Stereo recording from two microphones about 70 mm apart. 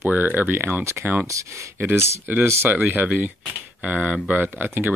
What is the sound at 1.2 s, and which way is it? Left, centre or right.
Speech, right.